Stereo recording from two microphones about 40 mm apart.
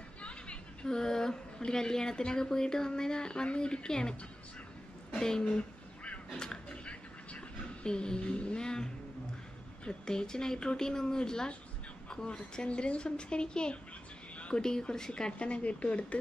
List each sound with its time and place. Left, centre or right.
0.8 s speech: centre
5.1 s a sound: centre
5.4 s a sound: left
8.3 s speech: left
8.5 s speech: centre
15.3 s speech: left